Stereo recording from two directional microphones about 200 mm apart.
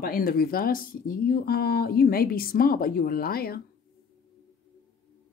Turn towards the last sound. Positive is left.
turn(degrees=50)  # may be behind; listen again after turning